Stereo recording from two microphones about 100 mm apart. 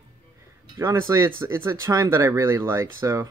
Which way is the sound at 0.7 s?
25° right (ahead or behind).